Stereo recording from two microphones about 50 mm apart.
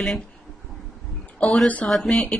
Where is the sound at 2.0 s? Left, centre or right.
Centre.